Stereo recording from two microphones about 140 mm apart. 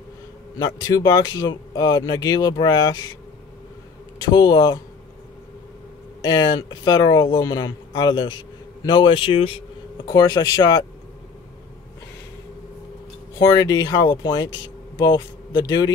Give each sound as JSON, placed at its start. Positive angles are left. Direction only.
{"t": 0.6, "sound": "speech", "side_deg": 25}
{"t": 4.2, "sound": "speech", "side_deg": 30}
{"t": 6.2, "sound": "a man's voice", "side_deg": 30}
{"t": 10.0, "sound": "speech", "side_deg": 25}
{"t": 13.4, "sound": "speech", "side_deg": 25}